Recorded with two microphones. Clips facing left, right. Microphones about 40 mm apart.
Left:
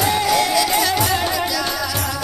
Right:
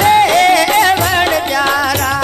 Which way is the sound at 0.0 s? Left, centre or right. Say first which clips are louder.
Right 9 dB; right.